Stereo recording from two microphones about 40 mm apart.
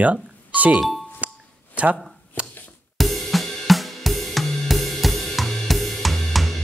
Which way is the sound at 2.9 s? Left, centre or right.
Centre.